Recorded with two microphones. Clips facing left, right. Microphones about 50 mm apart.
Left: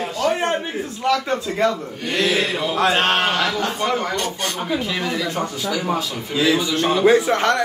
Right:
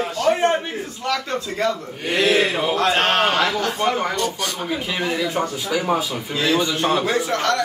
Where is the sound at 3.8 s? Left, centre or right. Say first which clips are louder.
Right 1 dB; centre.